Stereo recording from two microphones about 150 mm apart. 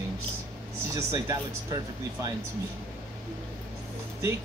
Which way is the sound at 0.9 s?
20° right (ahead or behind).